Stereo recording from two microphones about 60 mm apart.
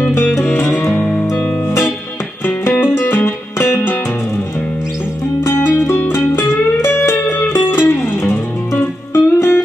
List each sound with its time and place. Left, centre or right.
0.5 s music: left
0.9 s music: left
2.7 s music: left
5.4 s music: left